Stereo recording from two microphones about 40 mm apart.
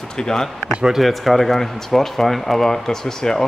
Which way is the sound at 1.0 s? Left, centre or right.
Centre.